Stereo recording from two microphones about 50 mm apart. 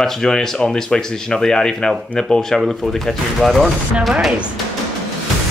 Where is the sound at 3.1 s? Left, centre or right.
Centre.